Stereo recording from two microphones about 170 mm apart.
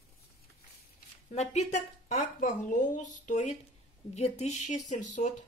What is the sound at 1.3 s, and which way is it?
A woman's voice, 40° left (ahead or behind).